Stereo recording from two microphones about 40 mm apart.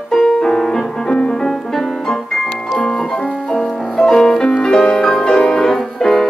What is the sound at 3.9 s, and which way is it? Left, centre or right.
Music, centre.